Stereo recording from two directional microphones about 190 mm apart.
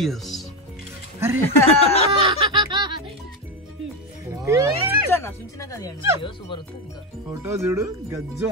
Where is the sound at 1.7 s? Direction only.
30° left (ahead or behind).